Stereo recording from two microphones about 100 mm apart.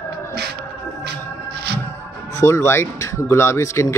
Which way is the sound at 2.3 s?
30° left (ahead or behind).